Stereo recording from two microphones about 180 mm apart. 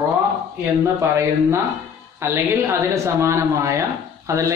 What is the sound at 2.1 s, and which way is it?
A man's voice, 15° right (ahead or behind).